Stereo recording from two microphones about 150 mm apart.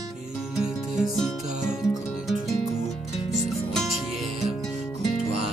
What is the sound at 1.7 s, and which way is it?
Music, 20° left (ahead or behind).